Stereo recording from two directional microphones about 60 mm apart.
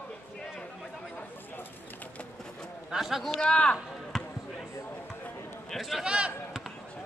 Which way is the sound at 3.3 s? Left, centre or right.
Centre.